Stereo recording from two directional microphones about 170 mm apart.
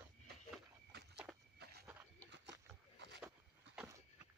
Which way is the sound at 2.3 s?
90° right.